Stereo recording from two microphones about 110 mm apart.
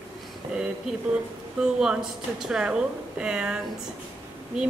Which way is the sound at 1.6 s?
5° right (ahead or behind).